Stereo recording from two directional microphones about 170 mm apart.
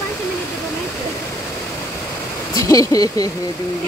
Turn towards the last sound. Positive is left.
turn(degrees=20)  # may be behind; listen again after turning